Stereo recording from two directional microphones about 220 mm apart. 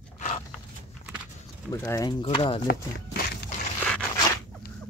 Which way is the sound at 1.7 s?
15° left (ahead or behind).